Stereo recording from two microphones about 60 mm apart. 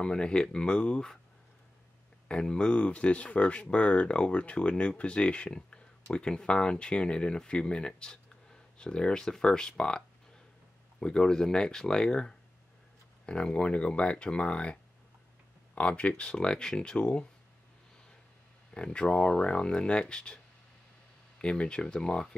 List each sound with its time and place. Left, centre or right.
0.0 s speech: centre
2.2 s speech: centre
18.7 s speech: centre
21.4 s speech: centre